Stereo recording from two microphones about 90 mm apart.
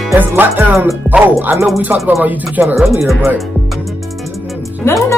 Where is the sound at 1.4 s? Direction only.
30° right (ahead or behind).